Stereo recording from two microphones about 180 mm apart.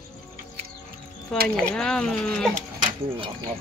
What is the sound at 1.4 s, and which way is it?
Speech, 5° left (ahead or behind).